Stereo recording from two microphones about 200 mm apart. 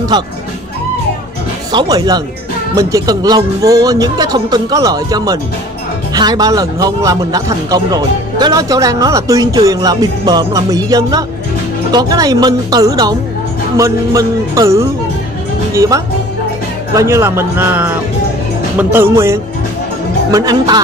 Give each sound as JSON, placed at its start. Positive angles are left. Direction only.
{"t": 1.7, "sound": "a man's voice", "side_deg": -20}